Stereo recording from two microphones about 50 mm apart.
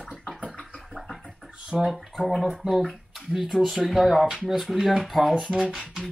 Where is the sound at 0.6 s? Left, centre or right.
Centre.